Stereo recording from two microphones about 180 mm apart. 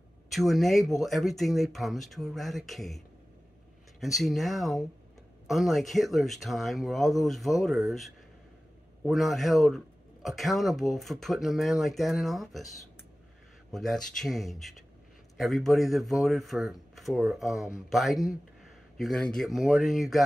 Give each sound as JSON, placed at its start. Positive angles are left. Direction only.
{"t": 0.3, "sound": "speech", "side_deg": 0}
{"t": 4.0, "sound": "speech", "side_deg": 0}
{"t": 9.0, "sound": "speech", "side_deg": 0}
{"t": 13.7, "sound": "speech", "side_deg": 0}